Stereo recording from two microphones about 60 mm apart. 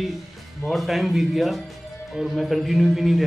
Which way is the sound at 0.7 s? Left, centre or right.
Centre.